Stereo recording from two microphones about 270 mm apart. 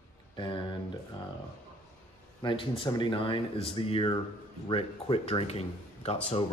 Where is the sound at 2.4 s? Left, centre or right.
Centre.